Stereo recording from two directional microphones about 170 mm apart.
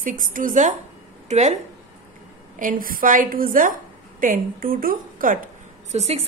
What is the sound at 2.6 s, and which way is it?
A woman's voice, 55° right (ahead or behind).